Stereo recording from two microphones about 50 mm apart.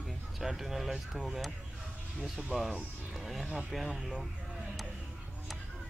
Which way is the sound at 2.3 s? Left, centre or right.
Centre.